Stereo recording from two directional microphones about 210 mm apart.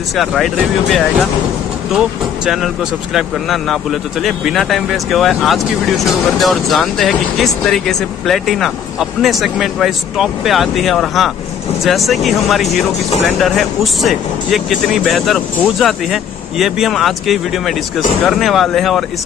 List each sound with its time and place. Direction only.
0.2 s speech: centre (ahead or behind)